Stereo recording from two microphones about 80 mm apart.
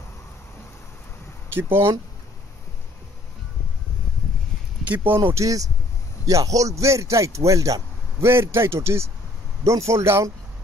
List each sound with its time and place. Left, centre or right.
1.6 s speech: right
4.8 s speech: right
5.4 s speech: right
8.3 s speech: right